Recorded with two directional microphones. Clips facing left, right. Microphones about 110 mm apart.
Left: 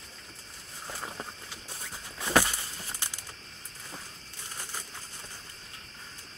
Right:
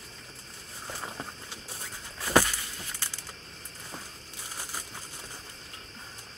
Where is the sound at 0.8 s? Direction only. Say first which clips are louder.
Right 1 dB; centre (ahead or behind).